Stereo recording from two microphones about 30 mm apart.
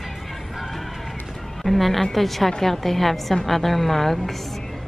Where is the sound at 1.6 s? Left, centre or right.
Centre.